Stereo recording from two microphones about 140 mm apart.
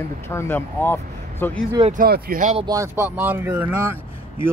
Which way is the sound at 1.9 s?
85° right.